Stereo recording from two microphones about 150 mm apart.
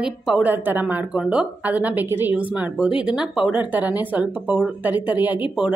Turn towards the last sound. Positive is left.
turn(degrees=-10)  # may be behind; listen again after turning